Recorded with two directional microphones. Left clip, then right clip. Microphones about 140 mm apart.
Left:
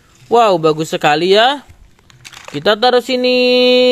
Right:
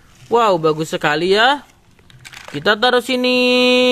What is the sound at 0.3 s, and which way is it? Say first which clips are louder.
Speech: left 3 dB; 25° left (ahead or behind).